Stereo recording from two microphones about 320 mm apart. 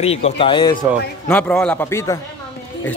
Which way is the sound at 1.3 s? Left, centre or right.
Centre.